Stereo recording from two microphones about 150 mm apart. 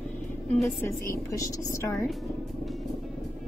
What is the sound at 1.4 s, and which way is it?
Speech, 20° left (ahead or behind).